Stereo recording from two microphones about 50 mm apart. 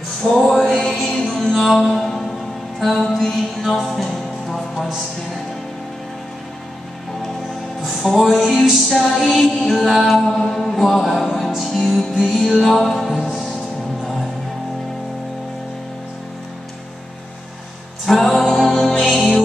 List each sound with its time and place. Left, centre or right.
0.2 s music: centre
7.8 s music: centre
18.0 s music: centre